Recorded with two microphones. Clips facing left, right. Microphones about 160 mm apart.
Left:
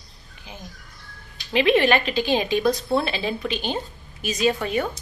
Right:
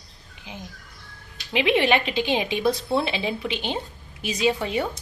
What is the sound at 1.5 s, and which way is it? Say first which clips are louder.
A woman's voice: left 2 dB; 15° right (ahead or behind).